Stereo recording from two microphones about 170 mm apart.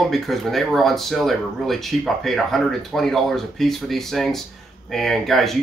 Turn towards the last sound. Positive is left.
turn(degrees=0)  # may be behind; listen again after turning